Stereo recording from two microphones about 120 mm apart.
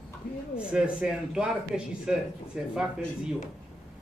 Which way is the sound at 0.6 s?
5° right (ahead or behind).